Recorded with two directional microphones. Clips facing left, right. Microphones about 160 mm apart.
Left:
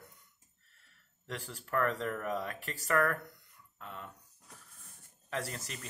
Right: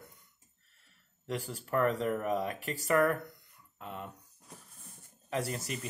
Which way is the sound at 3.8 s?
20° right (ahead or behind).